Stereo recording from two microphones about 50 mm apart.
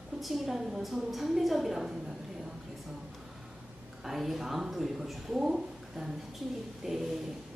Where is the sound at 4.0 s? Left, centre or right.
Centre.